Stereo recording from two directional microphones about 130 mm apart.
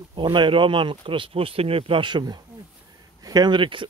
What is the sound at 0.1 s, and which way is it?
Speech, 35° right (ahead or behind).